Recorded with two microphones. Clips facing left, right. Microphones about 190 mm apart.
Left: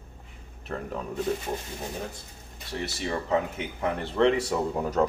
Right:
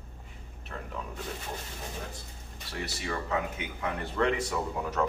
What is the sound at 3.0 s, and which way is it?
Speech, 30° left (ahead or behind).